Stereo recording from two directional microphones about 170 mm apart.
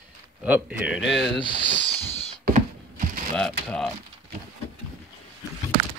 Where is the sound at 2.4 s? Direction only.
50° right (ahead or behind).